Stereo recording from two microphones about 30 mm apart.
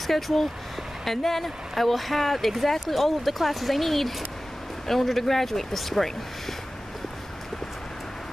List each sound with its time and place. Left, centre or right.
0.0 s speech: centre